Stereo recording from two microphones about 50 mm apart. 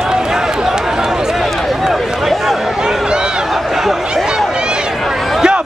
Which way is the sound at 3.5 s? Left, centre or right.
Centre.